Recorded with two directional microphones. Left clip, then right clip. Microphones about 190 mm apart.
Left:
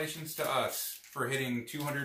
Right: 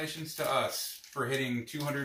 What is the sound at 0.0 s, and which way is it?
Speech, 10° left (ahead or behind).